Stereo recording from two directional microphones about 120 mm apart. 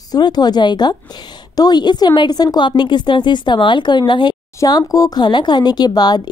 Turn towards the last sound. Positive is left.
turn(degrees=35)  # may be behind; listen again after turning